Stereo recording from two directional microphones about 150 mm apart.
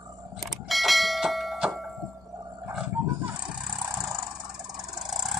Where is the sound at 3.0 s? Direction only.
15° right (ahead or behind).